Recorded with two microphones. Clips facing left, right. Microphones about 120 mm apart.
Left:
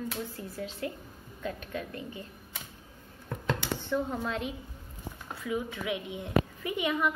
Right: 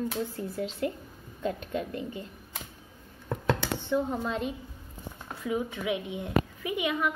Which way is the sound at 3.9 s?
15° right (ahead or behind).